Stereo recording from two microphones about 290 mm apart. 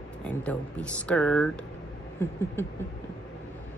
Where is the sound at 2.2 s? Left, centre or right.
Centre.